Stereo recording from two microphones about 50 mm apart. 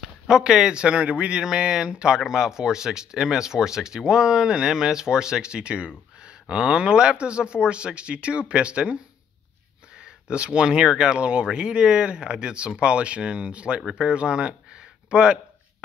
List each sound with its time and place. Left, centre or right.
0.0 s speech: centre
1.4 s speech: centre